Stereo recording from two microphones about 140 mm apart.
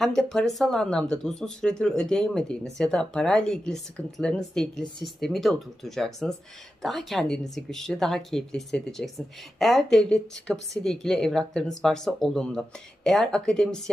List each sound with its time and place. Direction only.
0.0 s speech: 5° left (ahead or behind)